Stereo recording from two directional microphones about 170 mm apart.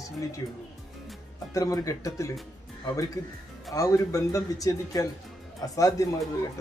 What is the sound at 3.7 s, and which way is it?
Speech, 20° left (ahead or behind).